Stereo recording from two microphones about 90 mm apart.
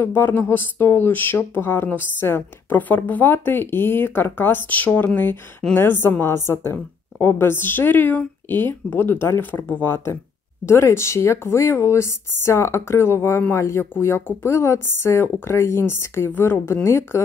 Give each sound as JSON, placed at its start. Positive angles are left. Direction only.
{"t": 0.0, "sound": "speech", "side_deg": 25}